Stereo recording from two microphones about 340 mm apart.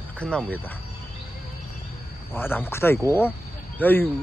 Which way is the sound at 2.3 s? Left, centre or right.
Centre.